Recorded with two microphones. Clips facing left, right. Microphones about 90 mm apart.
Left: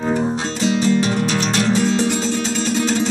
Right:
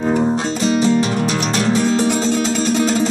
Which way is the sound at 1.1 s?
10° right (ahead or behind).